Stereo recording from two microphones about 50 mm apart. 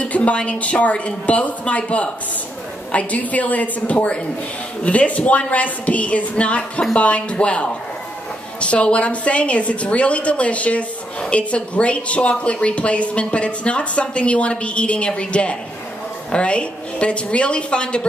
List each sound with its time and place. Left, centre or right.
0.0 s a woman's voice: left